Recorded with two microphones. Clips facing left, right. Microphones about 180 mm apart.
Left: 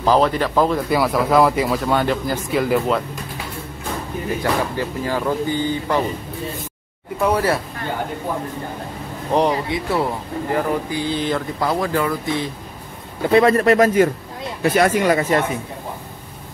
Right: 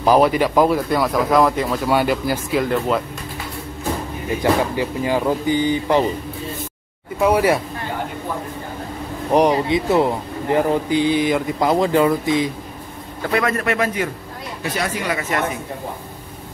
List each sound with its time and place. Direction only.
0.0 s speech: 10° right (ahead or behind)
0.7 s speech: 5° left (ahead or behind)
1.9 s speech: 10° right (ahead or behind)
4.4 s speech: 15° right (ahead or behind)
7.2 s speech: 10° right (ahead or behind)
9.3 s speech: 20° right (ahead or behind)
13.3 s a man's voice: 30° left (ahead or behind)
14.6 s speech: 55° left (ahead or behind)
15.1 s a man's voice: 35° left (ahead or behind)